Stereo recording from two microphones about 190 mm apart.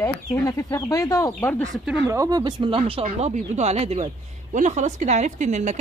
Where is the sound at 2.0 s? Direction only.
20° right (ahead or behind).